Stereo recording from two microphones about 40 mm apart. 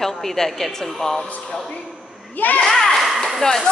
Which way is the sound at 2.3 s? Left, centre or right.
Left.